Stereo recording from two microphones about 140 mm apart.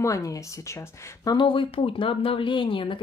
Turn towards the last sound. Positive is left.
turn(degrees=40)  # may be behind; listen again after turning